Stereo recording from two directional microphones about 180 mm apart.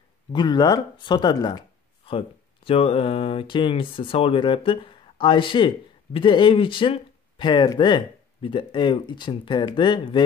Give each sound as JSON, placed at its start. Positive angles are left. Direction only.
{"t": 0.3, "sound": "speech", "side_deg": 25}